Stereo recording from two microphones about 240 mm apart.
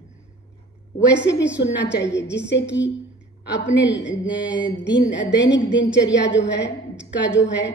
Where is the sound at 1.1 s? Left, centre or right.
Left.